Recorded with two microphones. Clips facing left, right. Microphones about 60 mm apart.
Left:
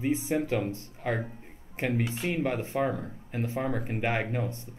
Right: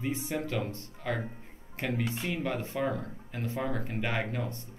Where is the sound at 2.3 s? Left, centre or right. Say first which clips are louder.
Left 6 dB; left.